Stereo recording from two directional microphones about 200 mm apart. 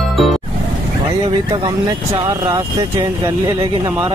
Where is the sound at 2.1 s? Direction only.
25° right (ahead or behind).